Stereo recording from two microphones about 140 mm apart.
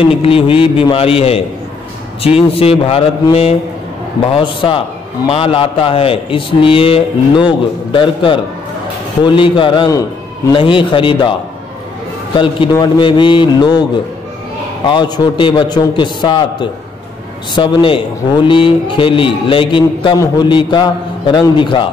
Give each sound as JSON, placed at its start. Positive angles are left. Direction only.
{"t": 0.0, "sound": "a man's voice", "side_deg": 40}
{"t": 12.7, "sound": "a man's voice", "side_deg": 30}
{"t": 14.9, "sound": "a man's voice", "side_deg": 30}